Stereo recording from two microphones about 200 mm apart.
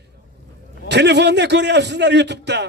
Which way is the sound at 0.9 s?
60° right (ahead or behind).